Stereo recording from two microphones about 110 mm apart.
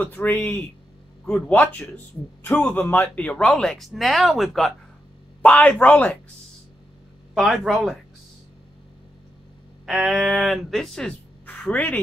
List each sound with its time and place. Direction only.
0.0 s a man's voice: 15° left (ahead or behind)
2.7 s speech: 15° left (ahead or behind); by 4.7 s centre (ahead or behind)
5.4 s speech: 15° left (ahead or behind)
7.3 s speech: centre (ahead or behind)
9.8 s speech: centre (ahead or behind); by 12.0 s 15° left (ahead or behind)